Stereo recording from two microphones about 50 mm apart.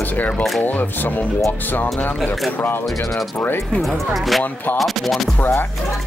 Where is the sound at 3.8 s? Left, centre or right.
Centre.